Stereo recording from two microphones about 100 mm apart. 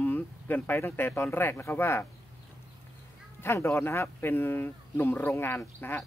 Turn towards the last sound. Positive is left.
turn(degrees=20)  # may be behind; listen again after turning